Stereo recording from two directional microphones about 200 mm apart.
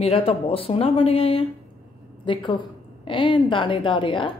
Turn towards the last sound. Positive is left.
turn(degrees=25)  # may be behind; listen again after turning